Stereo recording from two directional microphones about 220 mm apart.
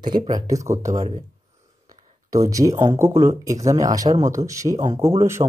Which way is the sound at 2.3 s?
15° right (ahead or behind).